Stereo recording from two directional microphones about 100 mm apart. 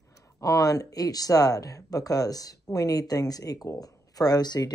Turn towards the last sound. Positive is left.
turn(degrees=45)  # may be behind; listen again after turning